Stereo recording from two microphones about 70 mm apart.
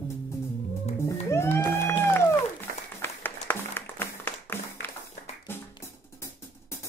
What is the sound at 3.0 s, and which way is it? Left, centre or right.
Applause, left.